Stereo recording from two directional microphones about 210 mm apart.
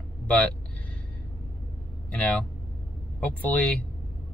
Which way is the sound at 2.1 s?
5° left (ahead or behind).